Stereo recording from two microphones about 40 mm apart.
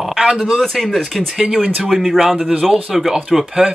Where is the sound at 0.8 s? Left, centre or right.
Centre.